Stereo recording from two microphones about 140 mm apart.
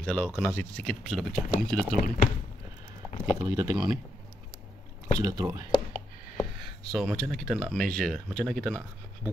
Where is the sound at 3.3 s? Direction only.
25° right (ahead or behind).